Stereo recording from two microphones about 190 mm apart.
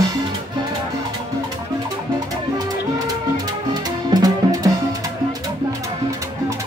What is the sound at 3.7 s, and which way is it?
Music, 20° right (ahead or behind).